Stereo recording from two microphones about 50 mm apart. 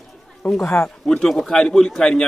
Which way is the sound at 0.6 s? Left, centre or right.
Left.